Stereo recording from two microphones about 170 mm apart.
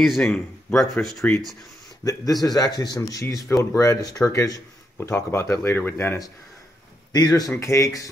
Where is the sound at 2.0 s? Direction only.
20° left (ahead or behind).